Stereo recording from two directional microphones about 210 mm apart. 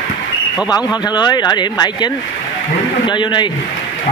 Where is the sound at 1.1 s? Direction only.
20° left (ahead or behind).